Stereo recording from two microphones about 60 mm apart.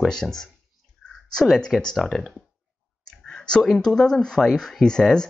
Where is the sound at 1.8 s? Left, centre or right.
Centre.